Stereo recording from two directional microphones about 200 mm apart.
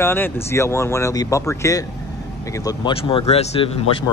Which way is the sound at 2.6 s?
25° left (ahead or behind).